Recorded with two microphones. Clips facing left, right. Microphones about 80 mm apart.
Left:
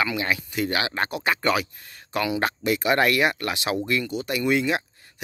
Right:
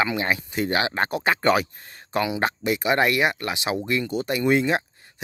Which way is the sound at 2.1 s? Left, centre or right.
Right.